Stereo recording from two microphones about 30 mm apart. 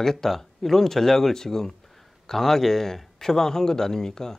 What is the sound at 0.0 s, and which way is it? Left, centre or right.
Speech, centre.